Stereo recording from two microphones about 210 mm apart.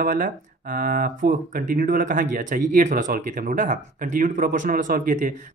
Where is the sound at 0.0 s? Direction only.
40° right (ahead or behind).